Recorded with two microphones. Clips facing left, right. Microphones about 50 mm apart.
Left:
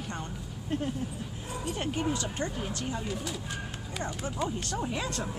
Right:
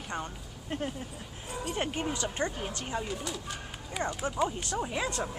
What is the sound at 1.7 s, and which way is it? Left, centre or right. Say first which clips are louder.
Speech: left 2 dB; centre.